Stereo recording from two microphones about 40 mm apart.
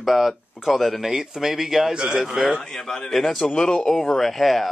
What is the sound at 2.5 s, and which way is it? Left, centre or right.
Speech, left.